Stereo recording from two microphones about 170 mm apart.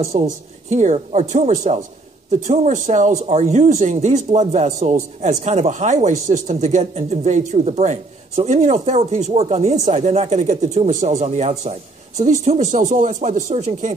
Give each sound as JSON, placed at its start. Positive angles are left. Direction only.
{"t": 0.1, "sound": "speech", "side_deg": -35}